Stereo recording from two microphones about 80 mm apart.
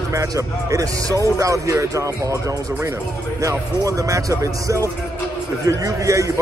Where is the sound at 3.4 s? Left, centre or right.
Right.